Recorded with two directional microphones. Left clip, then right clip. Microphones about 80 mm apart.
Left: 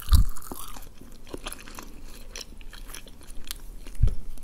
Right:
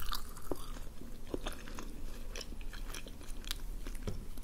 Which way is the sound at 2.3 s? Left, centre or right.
Centre.